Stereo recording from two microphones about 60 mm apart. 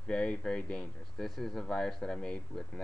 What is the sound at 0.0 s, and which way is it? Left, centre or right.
Speech, centre.